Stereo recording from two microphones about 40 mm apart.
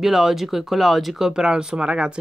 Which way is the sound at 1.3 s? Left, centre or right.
Centre.